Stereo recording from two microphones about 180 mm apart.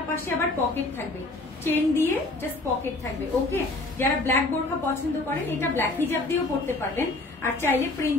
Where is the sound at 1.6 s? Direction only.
10° left (ahead or behind).